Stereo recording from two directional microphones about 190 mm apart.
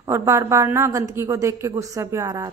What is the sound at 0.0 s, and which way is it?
A woman's voice, 15° right (ahead or behind).